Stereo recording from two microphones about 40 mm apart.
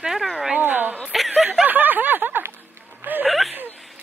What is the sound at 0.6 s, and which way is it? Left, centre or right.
Speech, right.